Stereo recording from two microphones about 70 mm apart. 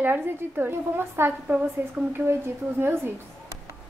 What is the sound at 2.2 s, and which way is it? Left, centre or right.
Speech, right.